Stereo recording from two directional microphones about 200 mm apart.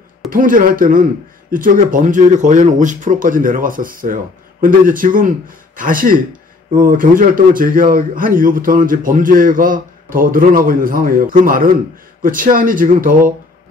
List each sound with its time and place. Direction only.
0.3 s a man's voice: 45° right (ahead or behind)